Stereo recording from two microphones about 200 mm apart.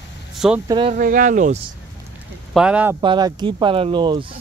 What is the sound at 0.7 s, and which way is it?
Speech, 25° right (ahead or behind).